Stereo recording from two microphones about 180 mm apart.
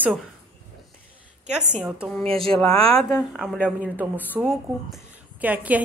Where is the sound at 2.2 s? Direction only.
30° right (ahead or behind).